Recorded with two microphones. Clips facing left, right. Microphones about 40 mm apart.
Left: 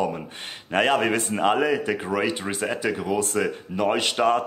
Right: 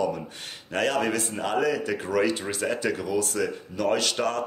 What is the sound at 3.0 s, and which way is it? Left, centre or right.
A man's voice, left.